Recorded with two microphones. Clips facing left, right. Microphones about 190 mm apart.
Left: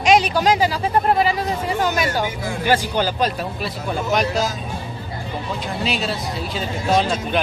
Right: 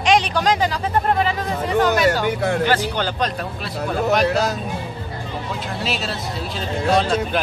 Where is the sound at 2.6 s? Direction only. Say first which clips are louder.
Left 1 dB; 10° left (ahead or behind).